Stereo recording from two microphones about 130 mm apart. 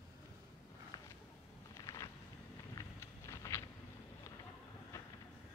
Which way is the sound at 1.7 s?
25° left (ahead or behind).